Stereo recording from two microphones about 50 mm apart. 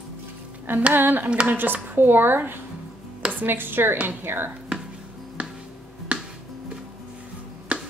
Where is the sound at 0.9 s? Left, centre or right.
Right.